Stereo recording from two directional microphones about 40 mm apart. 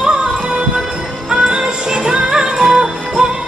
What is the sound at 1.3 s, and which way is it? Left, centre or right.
Music, right.